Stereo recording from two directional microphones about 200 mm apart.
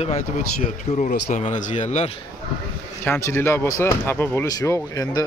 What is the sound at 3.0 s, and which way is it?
Speech, 10° left (ahead or behind).